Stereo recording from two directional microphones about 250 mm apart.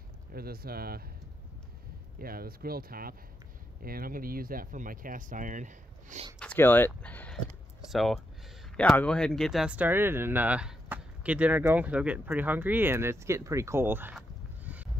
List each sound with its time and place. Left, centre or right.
0.3 s speech: right
2.1 s speech: right
6.4 s speech: centre